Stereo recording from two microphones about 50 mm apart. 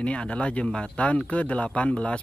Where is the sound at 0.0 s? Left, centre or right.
Left.